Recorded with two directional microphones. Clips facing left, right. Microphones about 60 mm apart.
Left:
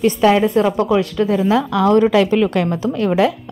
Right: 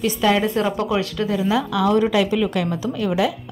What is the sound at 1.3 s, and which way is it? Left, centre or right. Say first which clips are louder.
A woman's voice: left 4 dB; left.